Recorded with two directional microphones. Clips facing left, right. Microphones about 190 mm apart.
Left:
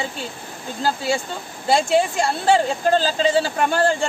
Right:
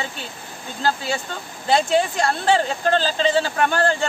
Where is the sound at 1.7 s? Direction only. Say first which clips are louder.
Left 1 dB; 10° left (ahead or behind).